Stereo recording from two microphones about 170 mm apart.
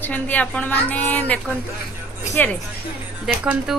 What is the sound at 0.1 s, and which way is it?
A woman's voice, 10° left (ahead or behind).